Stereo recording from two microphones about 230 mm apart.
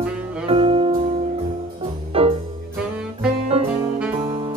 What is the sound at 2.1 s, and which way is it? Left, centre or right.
Music, right.